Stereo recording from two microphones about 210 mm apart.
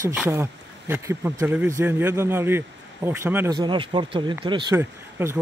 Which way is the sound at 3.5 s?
20° right (ahead or behind).